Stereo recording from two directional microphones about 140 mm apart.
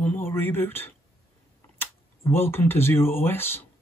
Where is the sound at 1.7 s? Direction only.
15° left (ahead or behind).